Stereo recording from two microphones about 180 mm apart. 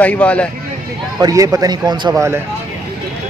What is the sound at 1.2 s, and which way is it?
A man's voice, 20° right (ahead or behind).